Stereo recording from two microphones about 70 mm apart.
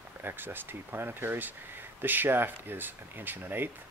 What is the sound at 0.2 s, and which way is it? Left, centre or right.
Speech, right.